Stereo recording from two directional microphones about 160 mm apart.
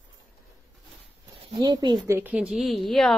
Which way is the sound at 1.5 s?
25° right (ahead or behind).